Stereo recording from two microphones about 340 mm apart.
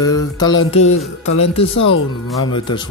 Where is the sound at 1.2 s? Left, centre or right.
Left.